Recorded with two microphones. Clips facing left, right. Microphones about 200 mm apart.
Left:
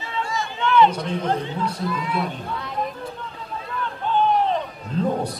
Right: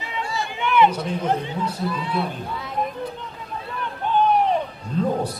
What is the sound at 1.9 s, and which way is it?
Speech, 30° right (ahead or behind).